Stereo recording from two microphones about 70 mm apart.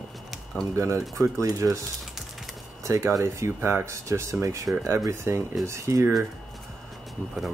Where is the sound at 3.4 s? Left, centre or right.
Right.